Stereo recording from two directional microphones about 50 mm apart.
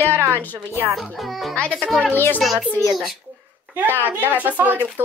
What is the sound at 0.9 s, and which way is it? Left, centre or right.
Speech, centre.